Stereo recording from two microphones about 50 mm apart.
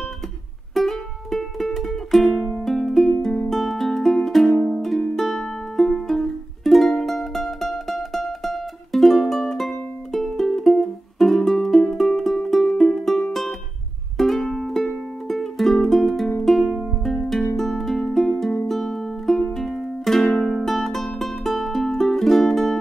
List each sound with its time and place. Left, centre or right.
0.7 s music: centre
4.6 s music: centre
5.1 s music: centre